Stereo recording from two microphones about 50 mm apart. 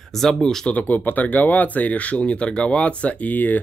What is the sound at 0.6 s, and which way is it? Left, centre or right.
Speech, left.